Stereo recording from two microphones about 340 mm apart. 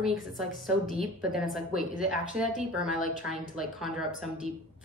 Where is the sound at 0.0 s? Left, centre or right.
Centre.